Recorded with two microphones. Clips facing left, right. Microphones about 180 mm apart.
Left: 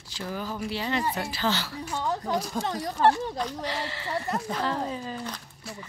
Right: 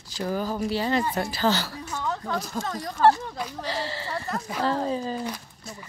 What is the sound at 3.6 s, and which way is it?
A woman's voice, 35° right (ahead or behind).